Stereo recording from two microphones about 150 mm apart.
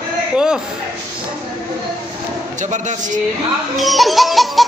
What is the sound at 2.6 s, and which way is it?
Speech, 55° right (ahead or behind).